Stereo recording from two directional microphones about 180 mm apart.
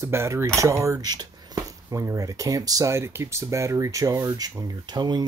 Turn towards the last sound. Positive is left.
turn(degrees=-25)  # may be behind; listen again after turning